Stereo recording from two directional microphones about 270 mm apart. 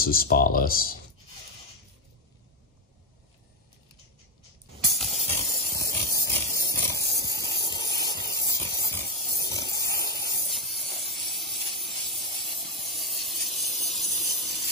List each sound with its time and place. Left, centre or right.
0.0 s speech: left
4.9 s a sound: centre
7.6 s hiss: centre
10.4 s hiss: centre